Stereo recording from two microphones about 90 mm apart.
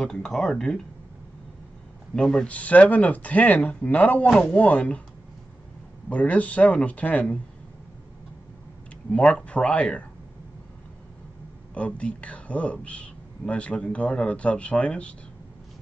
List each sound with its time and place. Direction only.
0.0 s speech: 5° left (ahead or behind)
2.1 s speech: 10° left (ahead or behind)
4.3 s speech: 5° left (ahead or behind)
6.0 s speech: 15° left (ahead or behind)
9.1 s speech: 10° left (ahead or behind)
11.7 s speech: 15° left (ahead or behind)